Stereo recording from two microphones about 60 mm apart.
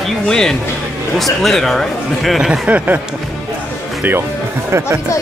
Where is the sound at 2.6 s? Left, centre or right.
Right.